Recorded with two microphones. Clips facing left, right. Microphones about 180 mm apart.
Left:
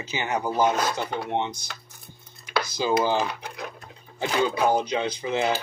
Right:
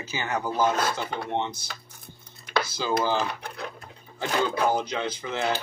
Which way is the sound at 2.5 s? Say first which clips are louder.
Left 2 dB; 15° left (ahead or behind).